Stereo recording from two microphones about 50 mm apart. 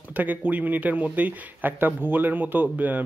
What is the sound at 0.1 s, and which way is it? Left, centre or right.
A man's voice, right.